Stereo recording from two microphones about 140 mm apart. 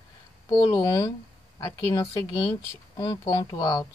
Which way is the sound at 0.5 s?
25° left (ahead or behind).